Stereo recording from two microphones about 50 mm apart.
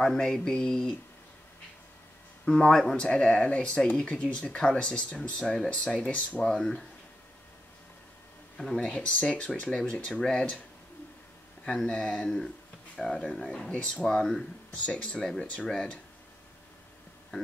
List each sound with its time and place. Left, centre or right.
0.0 s speech: centre
2.4 s speech: centre; by 6.4 s left
6.4 s speech: centre
8.7 s speech: centre
11.6 s speech: centre
13.7 s speech: left; by 14.4 s centre
14.7 s speech: left